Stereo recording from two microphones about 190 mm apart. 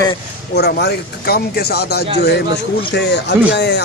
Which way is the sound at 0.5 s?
60° left (ahead or behind).